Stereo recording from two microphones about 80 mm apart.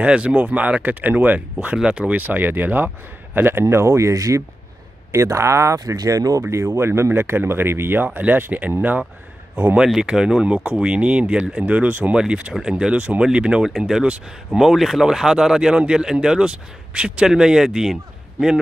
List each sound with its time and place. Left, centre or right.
0.0 s speech: centre
9.8 s speech: centre